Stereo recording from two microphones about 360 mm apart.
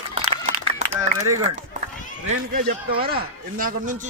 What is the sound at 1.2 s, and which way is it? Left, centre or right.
Speech, centre.